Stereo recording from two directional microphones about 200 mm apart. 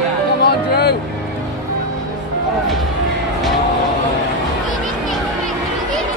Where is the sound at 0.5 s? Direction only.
55° left (ahead or behind).